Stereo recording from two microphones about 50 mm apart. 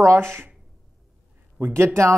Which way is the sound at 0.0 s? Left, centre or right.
Right.